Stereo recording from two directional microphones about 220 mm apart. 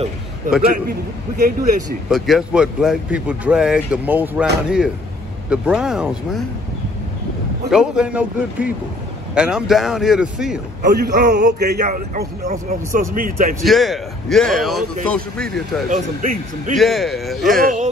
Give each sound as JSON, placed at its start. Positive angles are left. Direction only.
{"t": 0.7, "sound": "a man's voice", "side_deg": -45}
{"t": 2.0, "sound": "speech", "side_deg": 0}
{"t": 7.7, "sound": "speech", "side_deg": -5}
{"t": 10.8, "sound": "a man's voice", "side_deg": -40}
{"t": 13.7, "sound": "speech", "side_deg": 0}
{"t": 15.9, "sound": "a man's voice", "side_deg": -35}
{"t": 16.7, "sound": "speech", "side_deg": 0}
{"t": 17.5, "sound": "a man's voice", "side_deg": -40}